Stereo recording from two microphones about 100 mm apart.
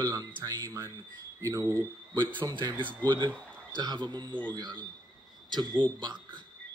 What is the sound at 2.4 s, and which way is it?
Speech, 45° right (ahead or behind).